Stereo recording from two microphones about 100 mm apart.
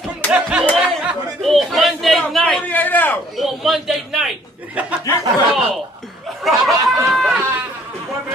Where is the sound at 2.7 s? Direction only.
15° left (ahead or behind).